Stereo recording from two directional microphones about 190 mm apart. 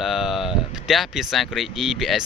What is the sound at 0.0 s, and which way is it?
Speech, centre (ahead or behind).